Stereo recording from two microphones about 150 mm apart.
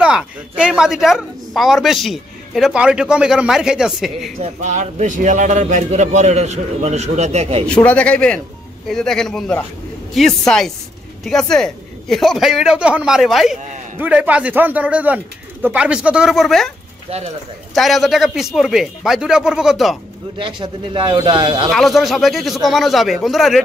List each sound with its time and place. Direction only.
0.0 s a man's voice: 5° right (ahead or behind)
4.4 s a man's voice: 50° right (ahead or behind)
7.6 s a man's voice: 10° left (ahead or behind)
17.7 s a man's voice: centre (ahead or behind)
20.3 s speech: 35° right (ahead or behind)
21.6 s a man's voice: centre (ahead or behind)